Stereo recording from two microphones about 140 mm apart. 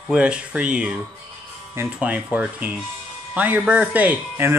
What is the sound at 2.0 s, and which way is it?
Speech, 10° right (ahead or behind).